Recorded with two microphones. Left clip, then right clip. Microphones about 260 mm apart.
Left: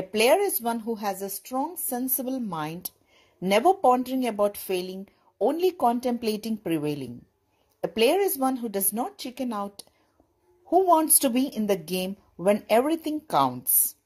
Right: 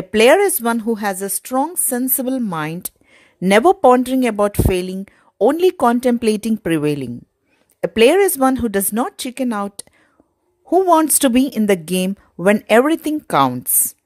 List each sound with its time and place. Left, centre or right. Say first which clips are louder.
0.1 s speech: right 10 dB; right